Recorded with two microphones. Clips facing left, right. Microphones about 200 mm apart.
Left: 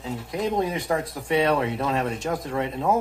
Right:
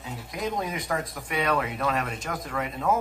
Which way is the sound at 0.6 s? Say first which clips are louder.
Left 5 dB; 30° left (ahead or behind).